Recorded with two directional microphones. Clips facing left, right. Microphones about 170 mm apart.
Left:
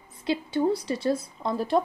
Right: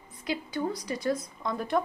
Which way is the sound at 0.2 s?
30° left (ahead or behind).